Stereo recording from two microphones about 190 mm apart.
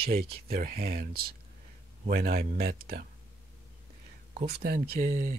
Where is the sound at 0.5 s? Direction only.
55° right (ahead or behind).